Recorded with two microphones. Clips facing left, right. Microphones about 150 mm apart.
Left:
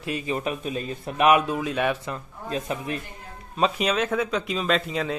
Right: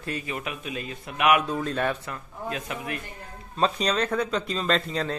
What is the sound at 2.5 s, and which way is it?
Speech, 30° left (ahead or behind).